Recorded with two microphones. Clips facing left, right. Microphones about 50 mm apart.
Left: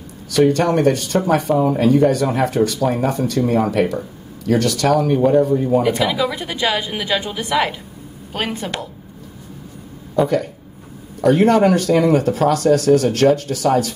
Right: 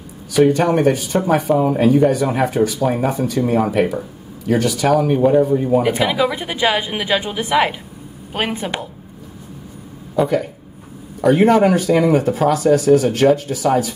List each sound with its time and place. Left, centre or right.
0.3 s speech: centre
10.1 s speech: centre